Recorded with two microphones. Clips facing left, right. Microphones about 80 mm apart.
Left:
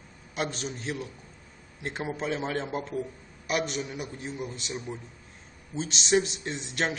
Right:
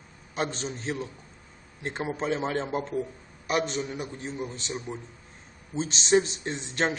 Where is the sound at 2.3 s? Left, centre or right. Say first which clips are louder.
Right 2 dB; centre.